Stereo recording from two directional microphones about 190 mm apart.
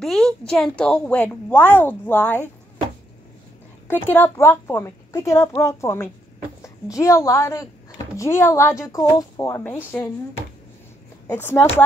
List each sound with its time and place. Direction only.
0.0 s a woman's voice: centre (ahead or behind)
3.8 s a woman's voice: 10° left (ahead or behind)